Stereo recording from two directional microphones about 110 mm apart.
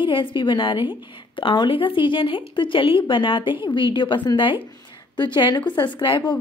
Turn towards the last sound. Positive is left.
turn(degrees=50)  # may be behind; listen again after turning